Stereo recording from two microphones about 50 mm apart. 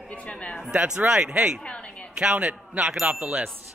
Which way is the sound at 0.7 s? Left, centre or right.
Centre.